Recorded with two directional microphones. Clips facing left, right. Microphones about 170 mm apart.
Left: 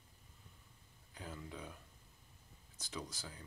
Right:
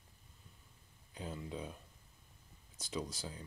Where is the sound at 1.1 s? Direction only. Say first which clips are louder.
Right 5 dB; 20° right (ahead or behind).